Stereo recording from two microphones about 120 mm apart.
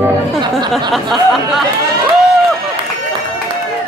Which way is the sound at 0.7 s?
Centre (ahead or behind).